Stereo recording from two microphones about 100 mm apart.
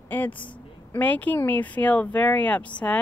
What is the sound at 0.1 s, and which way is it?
A woman's voice, 15° left (ahead or behind).